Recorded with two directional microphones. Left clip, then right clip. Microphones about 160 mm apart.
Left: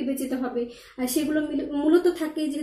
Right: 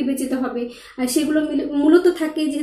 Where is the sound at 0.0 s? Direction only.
15° left (ahead or behind).